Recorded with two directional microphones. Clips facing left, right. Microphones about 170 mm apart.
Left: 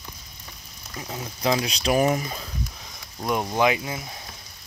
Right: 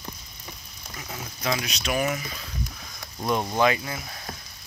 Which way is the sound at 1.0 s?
30° left (ahead or behind).